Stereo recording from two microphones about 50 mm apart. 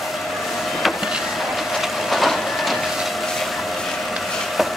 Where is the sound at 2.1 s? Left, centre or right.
Centre.